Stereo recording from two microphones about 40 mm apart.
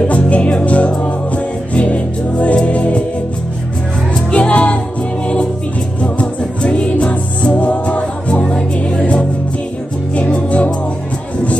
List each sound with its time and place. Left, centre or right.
0.1 s music: left
4.3 s music: left
6.0 s music: left